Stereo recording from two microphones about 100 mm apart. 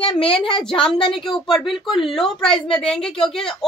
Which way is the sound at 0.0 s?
65° left (ahead or behind).